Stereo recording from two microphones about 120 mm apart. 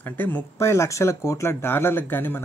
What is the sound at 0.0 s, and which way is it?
Speech, 15° left (ahead or behind).